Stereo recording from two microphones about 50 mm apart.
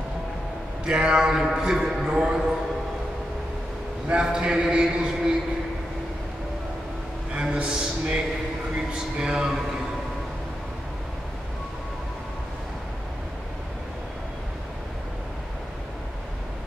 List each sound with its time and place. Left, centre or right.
0.8 s a man's voice: centre
4.1 s a man's voice: centre
7.3 s a man's voice: right